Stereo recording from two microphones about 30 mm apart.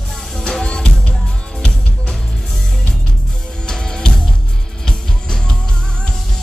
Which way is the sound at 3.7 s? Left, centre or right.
Left.